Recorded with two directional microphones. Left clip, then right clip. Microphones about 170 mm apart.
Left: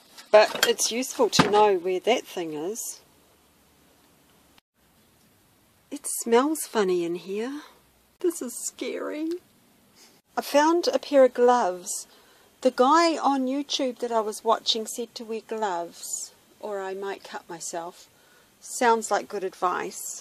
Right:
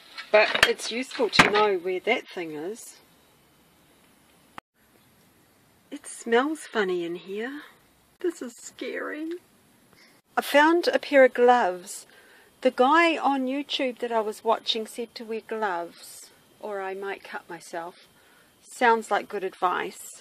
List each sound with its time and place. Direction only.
0.3 s speech: 10° left (ahead or behind)
4.6 s a sound: 40° right (ahead or behind)
5.9 s a woman's voice: 20° left (ahead or behind)
10.3 s speech: centre (ahead or behind)